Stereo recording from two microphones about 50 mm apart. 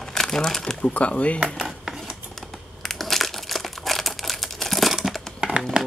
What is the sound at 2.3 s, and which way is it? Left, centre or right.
Crumpling, centre.